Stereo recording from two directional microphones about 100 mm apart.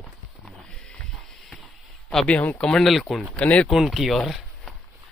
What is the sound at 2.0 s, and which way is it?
Speech, 10° left (ahead or behind).